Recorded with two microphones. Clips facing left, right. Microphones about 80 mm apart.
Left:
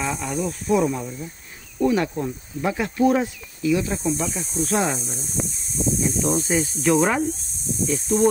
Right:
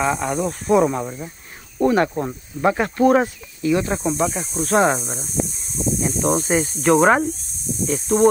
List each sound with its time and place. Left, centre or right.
0.0 s speech: right
5.4 s a sound: centre
5.9 s speech: right